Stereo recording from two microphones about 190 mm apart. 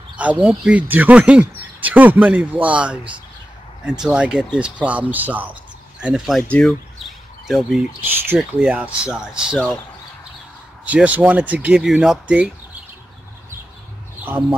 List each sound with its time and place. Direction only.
0.2 s speech: 5° right (ahead or behind)
10.9 s speech: 10° right (ahead or behind)